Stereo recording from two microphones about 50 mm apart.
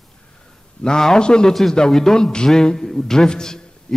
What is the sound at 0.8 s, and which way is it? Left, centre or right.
A man's voice, centre.